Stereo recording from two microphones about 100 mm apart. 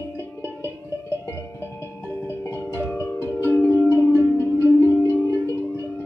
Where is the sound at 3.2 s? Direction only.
20° left (ahead or behind).